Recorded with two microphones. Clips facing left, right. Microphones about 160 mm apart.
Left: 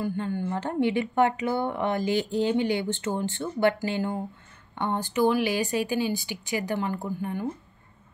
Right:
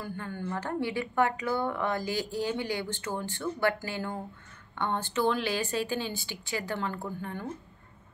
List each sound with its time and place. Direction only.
0.0 s a woman's voice: 20° left (ahead or behind)